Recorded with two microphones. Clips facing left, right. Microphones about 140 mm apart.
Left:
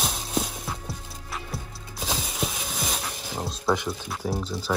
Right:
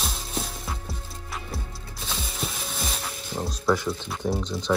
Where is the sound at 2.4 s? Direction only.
Centre (ahead or behind).